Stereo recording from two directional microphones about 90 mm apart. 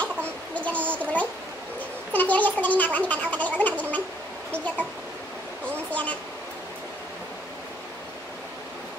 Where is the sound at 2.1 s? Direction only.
20° left (ahead or behind).